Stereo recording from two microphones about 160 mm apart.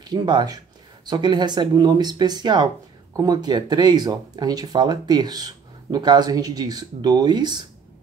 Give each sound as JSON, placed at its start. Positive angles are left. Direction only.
{"t": 0.0, "sound": "speech", "side_deg": -25}